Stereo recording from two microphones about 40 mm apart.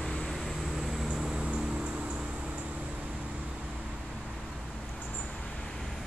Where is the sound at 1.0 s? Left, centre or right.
Centre.